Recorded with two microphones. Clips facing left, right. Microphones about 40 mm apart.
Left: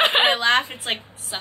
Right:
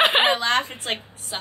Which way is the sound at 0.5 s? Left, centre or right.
Centre.